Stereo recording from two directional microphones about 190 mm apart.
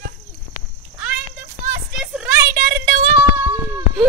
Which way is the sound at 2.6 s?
50° right (ahead or behind).